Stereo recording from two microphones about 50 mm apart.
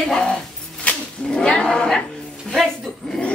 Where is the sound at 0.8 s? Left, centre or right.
Left.